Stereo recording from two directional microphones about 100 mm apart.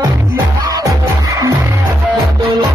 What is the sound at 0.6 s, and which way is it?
Music, 35° right (ahead or behind).